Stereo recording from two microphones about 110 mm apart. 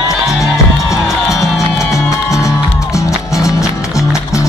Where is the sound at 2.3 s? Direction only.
30° left (ahead or behind).